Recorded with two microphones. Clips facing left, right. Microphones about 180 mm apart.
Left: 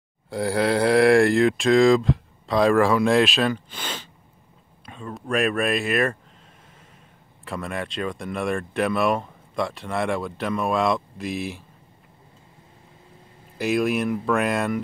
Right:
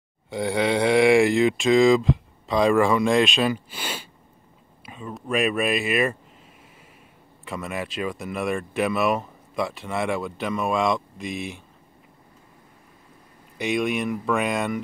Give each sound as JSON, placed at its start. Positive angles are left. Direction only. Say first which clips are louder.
{"t": 0.3, "sound": "speech", "louder": "left 1 dB", "side_deg": 0}
{"t": 7.4, "sound": "speech", "louder": "left 1 dB", "side_deg": 0}
{"t": 13.6, "sound": "speech", "louder": "left 2 dB", "side_deg": 0}